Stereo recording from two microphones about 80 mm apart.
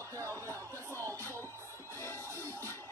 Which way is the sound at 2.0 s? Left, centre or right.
Left.